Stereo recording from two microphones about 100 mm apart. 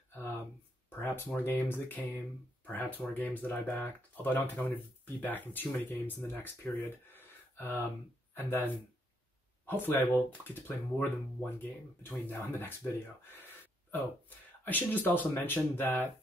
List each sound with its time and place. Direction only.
0.1 s a sound: 20° left (ahead or behind)
2.6 s speech: 15° left (ahead or behind)
9.7 s speech: 20° left (ahead or behind)
13.3 s gasp: 20° left (ahead or behind)
14.6 s speech: 20° left (ahead or behind)